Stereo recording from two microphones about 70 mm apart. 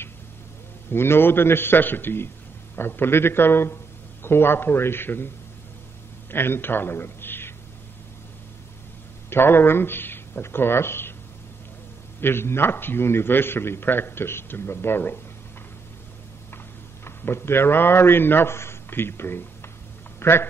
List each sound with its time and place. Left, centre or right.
0.9 s a man's voice: left
6.3 s a man's voice: left
9.3 s speech: left
12.2 s a man's voice: left
17.0 s a man's voice: left
20.2 s a sound: left